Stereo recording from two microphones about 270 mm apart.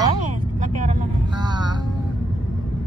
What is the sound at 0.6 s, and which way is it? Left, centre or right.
Speech, right.